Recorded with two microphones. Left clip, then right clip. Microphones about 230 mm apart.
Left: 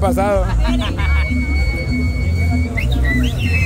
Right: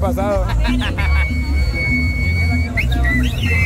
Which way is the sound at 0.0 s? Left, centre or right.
Left.